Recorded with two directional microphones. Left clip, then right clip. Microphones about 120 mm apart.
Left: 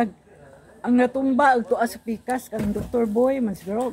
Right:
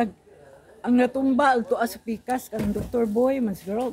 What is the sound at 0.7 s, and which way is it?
Speech, 5° left (ahead or behind).